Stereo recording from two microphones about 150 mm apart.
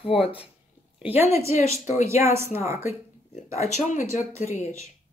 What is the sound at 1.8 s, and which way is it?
Speech, 45° left (ahead or behind).